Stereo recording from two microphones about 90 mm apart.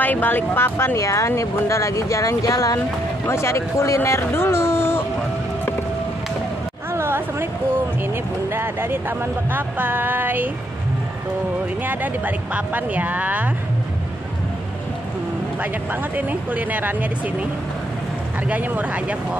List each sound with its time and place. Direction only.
0.0 s speech: 20° left (ahead or behind)
6.9 s a sound: 25° right (ahead or behind)
8.0 s speech: 25° right (ahead or behind)
11.8 s speech: 20° right (ahead or behind)
15.6 s speech: 20° right (ahead or behind)
18.5 s speech: 20° right (ahead or behind)